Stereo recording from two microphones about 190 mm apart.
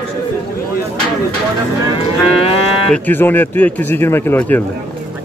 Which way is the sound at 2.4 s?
30° left (ahead or behind).